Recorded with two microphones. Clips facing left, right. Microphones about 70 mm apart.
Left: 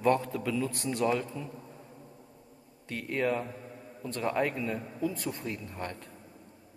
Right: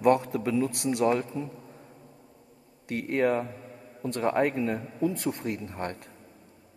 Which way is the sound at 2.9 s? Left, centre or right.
Right.